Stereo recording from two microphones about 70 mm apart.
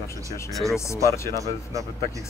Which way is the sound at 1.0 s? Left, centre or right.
Left.